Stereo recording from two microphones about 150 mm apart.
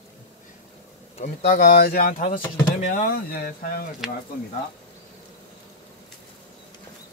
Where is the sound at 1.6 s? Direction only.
90° left.